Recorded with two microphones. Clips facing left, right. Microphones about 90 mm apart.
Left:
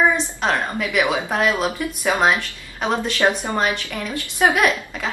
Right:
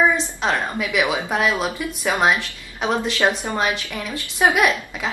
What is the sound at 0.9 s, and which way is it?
Speech, 15° right (ahead or behind).